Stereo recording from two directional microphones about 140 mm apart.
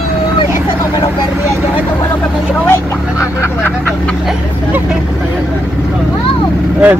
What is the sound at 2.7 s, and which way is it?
Vehicle, 20° left (ahead or behind).